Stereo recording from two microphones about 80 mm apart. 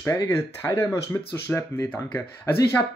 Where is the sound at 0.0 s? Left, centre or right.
Left.